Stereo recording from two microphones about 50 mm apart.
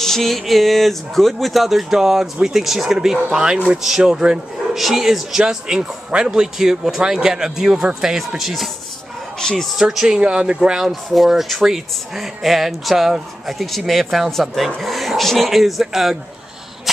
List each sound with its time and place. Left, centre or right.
0.0 s a man's voice: centre
9.4 s speech: centre
9.8 s a man's voice: centre
10.0 s speech: centre
11.1 s speech: centre